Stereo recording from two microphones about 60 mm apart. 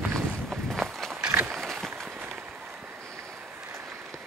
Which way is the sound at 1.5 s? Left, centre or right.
Centre.